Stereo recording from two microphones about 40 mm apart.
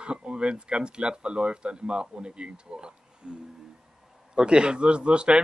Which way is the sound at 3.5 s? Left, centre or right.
Centre.